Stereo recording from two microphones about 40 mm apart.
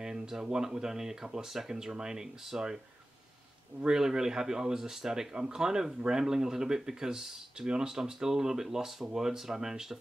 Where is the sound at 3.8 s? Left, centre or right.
Centre.